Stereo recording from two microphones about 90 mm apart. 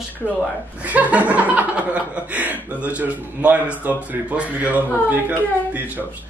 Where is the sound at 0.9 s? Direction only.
15° right (ahead or behind).